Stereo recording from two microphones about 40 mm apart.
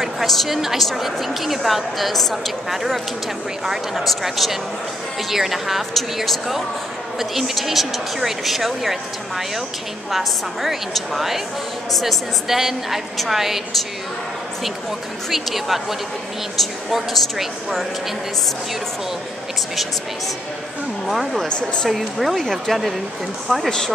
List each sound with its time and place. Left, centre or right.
0.0 s a sound: centre
0.6 s a woman's voice: centre
10.1 s a woman's voice: centre
15.2 s speech: centre
21.1 s speech: centre
21.5 s speech: left
21.9 s speech: centre